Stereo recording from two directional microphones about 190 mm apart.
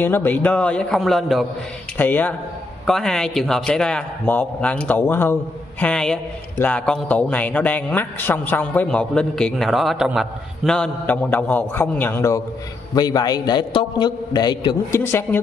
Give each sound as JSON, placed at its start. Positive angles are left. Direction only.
{"t": 0.0, "sound": "a man's voice", "side_deg": 10}
{"t": 15.0, "sound": "a man's voice", "side_deg": 10}